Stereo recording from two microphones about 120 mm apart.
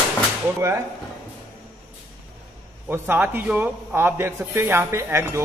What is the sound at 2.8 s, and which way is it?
Speech, 20° right (ahead or behind).